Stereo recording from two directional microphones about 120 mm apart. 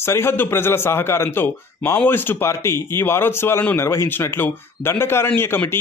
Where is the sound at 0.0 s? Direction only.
20° left (ahead or behind).